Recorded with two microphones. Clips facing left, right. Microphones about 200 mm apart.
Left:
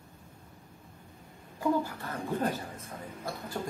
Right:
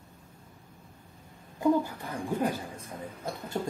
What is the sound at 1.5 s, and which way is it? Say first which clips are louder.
Speech: right 4 dB; 15° right (ahead or behind).